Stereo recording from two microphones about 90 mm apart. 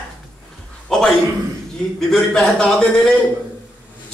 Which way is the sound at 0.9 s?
5° left (ahead or behind).